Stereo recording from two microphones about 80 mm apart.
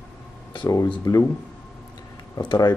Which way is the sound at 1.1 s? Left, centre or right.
Left.